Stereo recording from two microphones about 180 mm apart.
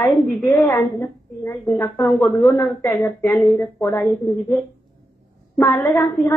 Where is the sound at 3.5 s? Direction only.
10° left (ahead or behind).